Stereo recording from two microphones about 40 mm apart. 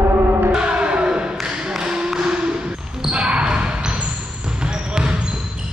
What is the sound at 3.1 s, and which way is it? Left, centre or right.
Basketball bounce, right.